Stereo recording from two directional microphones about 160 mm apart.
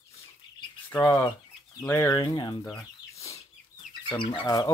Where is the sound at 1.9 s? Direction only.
15° left (ahead or behind).